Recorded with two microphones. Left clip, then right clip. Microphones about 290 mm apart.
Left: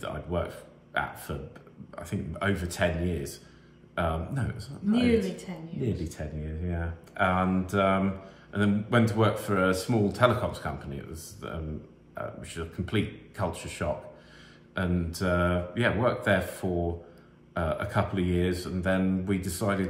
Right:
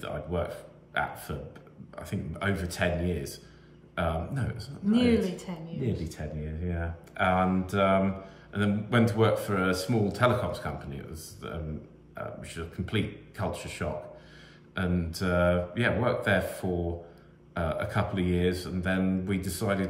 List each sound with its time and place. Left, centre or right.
0.0 s a man's voice: centre
4.9 s a woman's voice: centre
6.0 s a man's voice: centre
17.6 s a man's voice: centre